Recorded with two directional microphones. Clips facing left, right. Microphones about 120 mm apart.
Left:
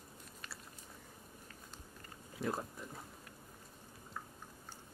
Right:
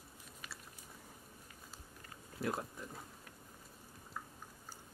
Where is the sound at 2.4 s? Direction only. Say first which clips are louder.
Even; centre (ahead or behind).